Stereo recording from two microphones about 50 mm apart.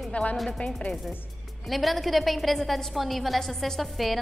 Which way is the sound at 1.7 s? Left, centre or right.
Centre.